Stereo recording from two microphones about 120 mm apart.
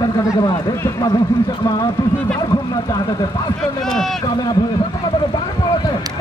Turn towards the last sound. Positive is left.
turn(degrees=40)  # may be behind; listen again after turning